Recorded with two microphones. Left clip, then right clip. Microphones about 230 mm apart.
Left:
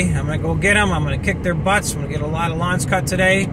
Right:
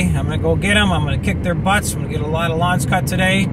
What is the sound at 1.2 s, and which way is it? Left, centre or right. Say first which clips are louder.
Speech: left 1 dB; centre.